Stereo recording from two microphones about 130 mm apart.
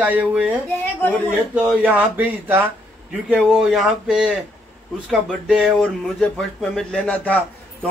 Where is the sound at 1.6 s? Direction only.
10° right (ahead or behind); by 7.4 s 10° left (ahead or behind).